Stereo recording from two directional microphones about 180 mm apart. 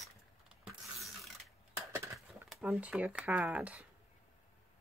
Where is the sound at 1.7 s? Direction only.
15° right (ahead or behind).